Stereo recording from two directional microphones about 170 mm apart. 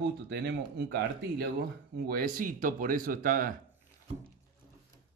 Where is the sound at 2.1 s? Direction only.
55° right (ahead or behind).